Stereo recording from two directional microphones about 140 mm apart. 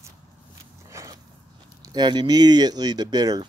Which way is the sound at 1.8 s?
30° right (ahead or behind).